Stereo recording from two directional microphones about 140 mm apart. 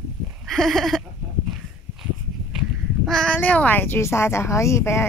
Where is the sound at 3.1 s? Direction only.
5° left (ahead or behind).